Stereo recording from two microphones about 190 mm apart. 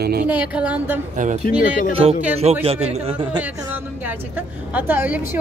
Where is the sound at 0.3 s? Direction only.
5° right (ahead or behind).